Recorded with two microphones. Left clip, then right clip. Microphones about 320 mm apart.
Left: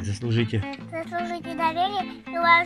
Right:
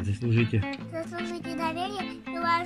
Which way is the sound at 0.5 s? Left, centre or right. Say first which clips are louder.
Left 1 dB; centre.